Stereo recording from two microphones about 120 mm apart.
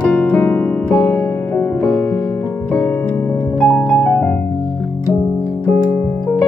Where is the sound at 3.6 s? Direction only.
5° left (ahead or behind).